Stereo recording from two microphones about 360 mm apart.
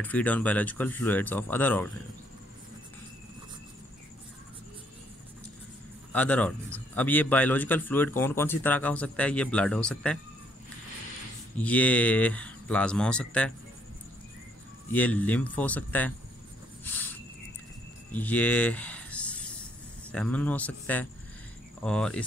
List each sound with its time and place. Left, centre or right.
0.0 s a man's voice: centre
6.1 s a man's voice: centre
11.5 s a man's voice: centre
14.9 s a man's voice: centre
16.8 s a sound: centre
20.1 s a man's voice: centre